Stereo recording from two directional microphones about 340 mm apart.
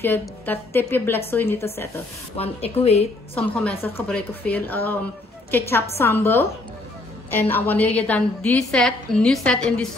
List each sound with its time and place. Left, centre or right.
0.0 s a woman's voice: centre
2.3 s a woman's voice: centre
3.3 s a woman's voice: centre